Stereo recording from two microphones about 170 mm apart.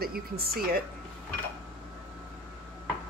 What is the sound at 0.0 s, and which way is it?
Speech, 65° right (ahead or behind).